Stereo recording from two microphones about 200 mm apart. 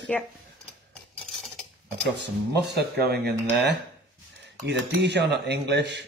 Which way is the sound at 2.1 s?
55° right (ahead or behind).